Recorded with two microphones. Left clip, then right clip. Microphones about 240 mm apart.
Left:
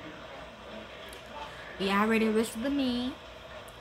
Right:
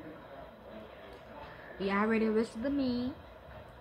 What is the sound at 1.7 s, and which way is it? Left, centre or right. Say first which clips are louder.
Speech: left 4 dB; centre.